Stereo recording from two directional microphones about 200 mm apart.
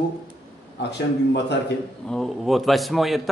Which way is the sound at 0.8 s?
60° left (ahead or behind).